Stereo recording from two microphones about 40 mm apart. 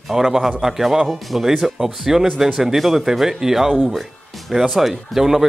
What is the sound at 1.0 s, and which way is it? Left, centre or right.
Speech, centre.